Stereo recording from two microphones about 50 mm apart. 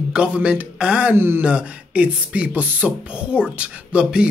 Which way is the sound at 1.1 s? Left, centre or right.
Right.